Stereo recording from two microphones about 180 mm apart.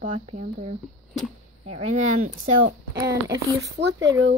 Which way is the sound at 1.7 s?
40° right (ahead or behind).